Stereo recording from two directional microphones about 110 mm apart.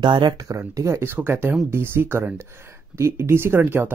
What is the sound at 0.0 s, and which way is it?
Speech, 45° right (ahead or behind).